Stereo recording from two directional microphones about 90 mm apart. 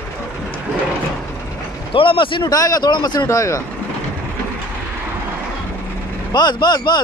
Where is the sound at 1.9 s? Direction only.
75° left (ahead or behind).